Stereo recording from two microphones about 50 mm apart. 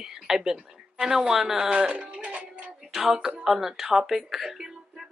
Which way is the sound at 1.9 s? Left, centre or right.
Right.